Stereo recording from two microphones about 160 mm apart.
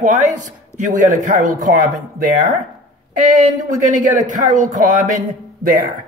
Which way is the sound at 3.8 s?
55° right (ahead or behind).